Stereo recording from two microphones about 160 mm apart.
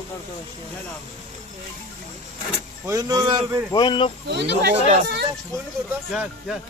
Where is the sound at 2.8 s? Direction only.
20° right (ahead or behind).